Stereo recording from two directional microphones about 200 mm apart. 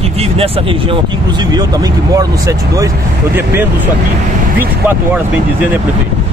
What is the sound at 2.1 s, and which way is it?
Speech, 15° right (ahead or behind).